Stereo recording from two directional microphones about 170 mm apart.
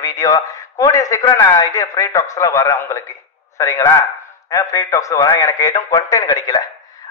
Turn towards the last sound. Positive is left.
turn(degrees=20)  # may be behind; listen again after turning